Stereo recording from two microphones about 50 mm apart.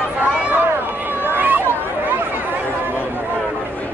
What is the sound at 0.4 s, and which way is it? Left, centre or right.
Run, right.